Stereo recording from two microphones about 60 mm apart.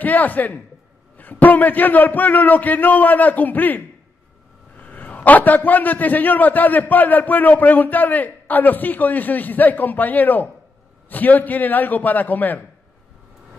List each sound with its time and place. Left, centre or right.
0.0 s a man's voice: left